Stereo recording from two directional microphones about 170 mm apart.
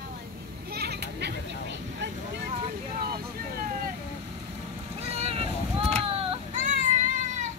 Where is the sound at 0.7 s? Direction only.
70° right (ahead or behind).